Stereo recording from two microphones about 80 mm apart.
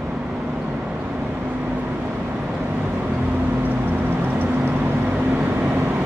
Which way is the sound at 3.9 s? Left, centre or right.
Right.